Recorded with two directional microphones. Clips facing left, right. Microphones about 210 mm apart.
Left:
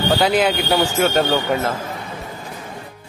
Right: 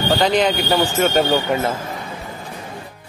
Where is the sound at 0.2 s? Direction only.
5° left (ahead or behind).